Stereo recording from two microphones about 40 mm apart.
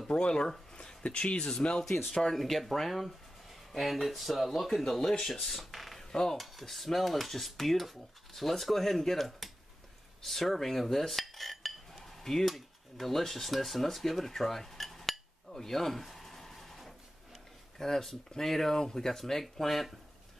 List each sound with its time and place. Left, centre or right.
0.1 s speech: left
2.2 s dishes: centre
5.3 s speech: centre
6.3 s dishes: centre
17.7 s speech: centre
19.5 s dishes: centre